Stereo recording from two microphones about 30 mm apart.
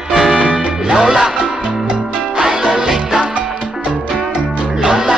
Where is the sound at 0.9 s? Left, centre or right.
Centre.